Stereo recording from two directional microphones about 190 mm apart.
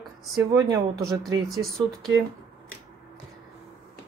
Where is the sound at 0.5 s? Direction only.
15° right (ahead or behind).